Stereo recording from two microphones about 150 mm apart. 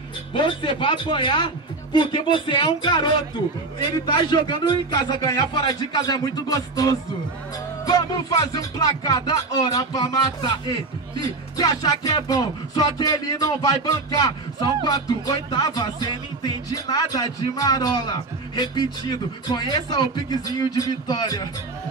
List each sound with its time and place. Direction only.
0.3 s a man's voice: 30° left (ahead or behind)
3.8 s music: 30° left (ahead or behind)